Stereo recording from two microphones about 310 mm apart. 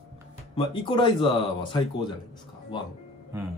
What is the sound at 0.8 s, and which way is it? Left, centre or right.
Speech, centre.